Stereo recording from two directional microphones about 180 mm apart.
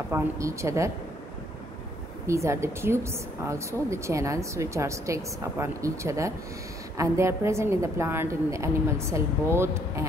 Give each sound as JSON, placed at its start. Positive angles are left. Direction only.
{"t": 0.1, "sound": "a woman's voice", "side_deg": -15}
{"t": 2.2, "sound": "a woman's voice", "side_deg": -15}